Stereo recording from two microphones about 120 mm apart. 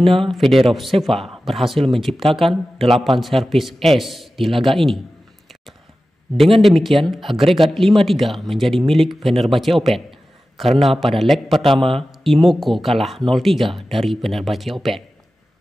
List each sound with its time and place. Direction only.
0.3 s speech: centre (ahead or behind)
6.3 s speech: centre (ahead or behind)